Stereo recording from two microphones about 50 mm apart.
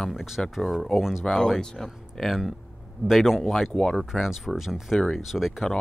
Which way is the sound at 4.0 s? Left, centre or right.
Centre.